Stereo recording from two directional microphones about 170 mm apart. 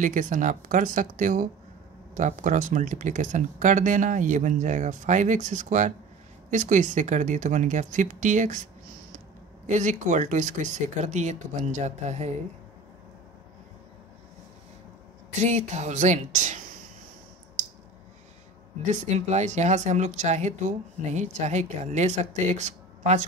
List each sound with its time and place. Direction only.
0.0 s speech: 50° right (ahead or behind)
9.7 s speech: 45° right (ahead or behind)
15.4 s speech: 45° right (ahead or behind)
18.9 s speech: 40° right (ahead or behind)